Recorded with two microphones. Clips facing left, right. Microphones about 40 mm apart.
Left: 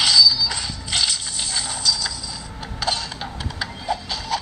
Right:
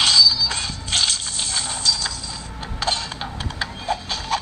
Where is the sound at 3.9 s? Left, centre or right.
Right.